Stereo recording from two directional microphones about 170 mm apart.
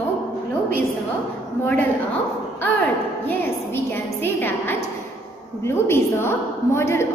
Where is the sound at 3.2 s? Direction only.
10° left (ahead or behind).